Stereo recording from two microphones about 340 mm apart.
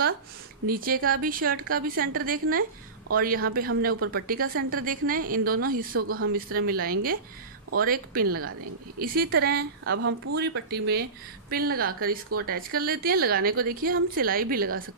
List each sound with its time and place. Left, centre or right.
0.7 s a woman's voice: right
5.9 s speech: right
6.3 s a woman's voice: right
9.8 s a woman's voice: right